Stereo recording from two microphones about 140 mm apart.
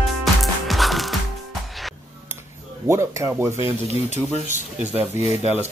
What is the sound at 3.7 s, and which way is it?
Speech, 55° right (ahead or behind).